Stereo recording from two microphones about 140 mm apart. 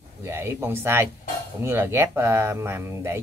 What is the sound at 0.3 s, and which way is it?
Speech, 15° right (ahead or behind).